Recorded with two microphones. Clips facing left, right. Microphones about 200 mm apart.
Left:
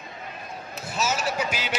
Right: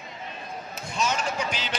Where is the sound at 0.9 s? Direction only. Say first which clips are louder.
Left 1 dB; 5° left (ahead or behind).